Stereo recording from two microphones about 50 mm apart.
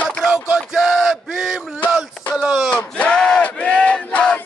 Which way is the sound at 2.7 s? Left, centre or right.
Left.